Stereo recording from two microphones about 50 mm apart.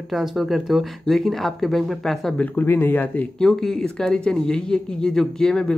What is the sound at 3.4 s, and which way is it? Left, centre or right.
Speech, centre.